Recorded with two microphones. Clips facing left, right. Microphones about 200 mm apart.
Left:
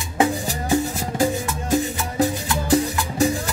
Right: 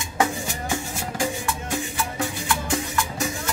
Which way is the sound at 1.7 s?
35° left (ahead or behind).